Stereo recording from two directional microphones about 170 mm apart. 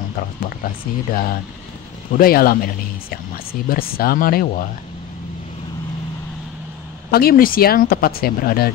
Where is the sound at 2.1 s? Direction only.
60° left (ahead or behind).